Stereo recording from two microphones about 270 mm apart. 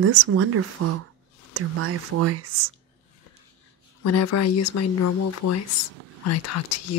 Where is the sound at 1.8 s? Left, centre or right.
Right.